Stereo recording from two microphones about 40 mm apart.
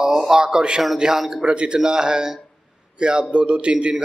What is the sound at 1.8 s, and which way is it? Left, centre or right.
A man's voice, centre.